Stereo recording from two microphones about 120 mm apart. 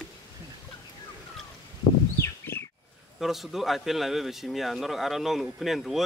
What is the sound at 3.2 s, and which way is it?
Speech, centre (ahead or behind).